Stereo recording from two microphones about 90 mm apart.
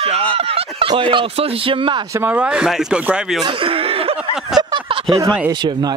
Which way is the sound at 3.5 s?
80° right.